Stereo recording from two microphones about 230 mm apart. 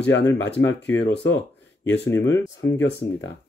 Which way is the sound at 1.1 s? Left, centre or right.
Left.